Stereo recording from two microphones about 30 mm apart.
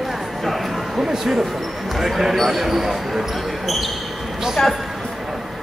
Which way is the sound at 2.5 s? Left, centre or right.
Centre.